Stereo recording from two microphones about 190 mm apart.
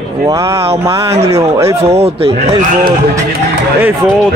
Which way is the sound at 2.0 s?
30° right (ahead or behind).